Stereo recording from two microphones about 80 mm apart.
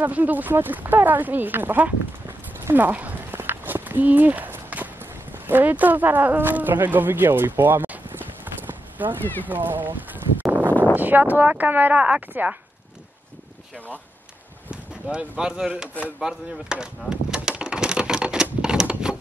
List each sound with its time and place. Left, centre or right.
0.0 s speech: right
3.3 s walk: right
5.5 s speech: right
10.4 s a sound: right
11.0 s speech: right
14.7 s speech: centre
16.2 s a sound: centre